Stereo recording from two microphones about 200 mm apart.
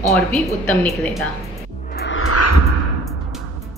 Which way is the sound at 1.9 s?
80° left.